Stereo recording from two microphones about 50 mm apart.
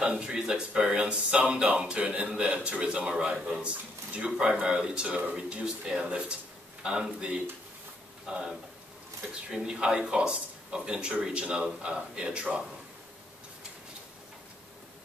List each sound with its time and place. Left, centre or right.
0.0 s speech: centre